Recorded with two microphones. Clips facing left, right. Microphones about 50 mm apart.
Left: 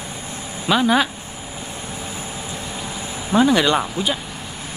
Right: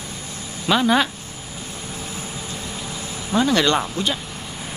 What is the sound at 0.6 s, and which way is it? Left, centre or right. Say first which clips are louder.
Speech: left 1 dB; centre.